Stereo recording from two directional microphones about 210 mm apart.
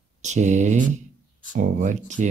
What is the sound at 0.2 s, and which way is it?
Speech, 35° right (ahead or behind).